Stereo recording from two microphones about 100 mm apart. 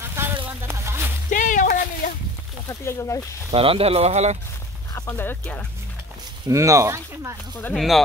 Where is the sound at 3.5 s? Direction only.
70° right (ahead or behind); by 4.4 s 90° right.